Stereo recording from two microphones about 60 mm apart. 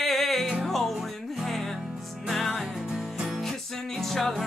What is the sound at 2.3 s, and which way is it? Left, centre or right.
Music, centre.